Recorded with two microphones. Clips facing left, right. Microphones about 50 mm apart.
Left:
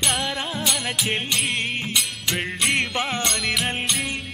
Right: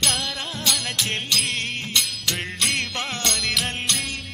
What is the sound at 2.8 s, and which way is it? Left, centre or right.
Music, centre.